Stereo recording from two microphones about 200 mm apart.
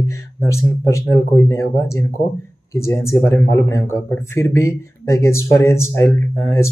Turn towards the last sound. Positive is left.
turn(degrees=15)  # may be behind; listen again after turning